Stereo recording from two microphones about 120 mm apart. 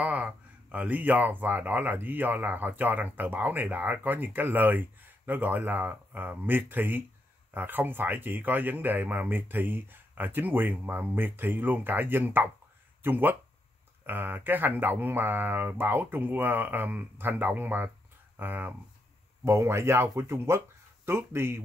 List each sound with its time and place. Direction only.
0.0 s speech: 10° right (ahead or behind)